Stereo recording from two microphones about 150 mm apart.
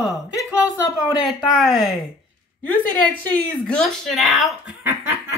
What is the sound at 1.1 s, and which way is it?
Speech, centre (ahead or behind).